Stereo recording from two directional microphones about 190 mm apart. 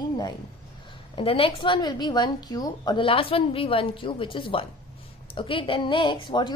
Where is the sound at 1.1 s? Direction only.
30° left (ahead or behind).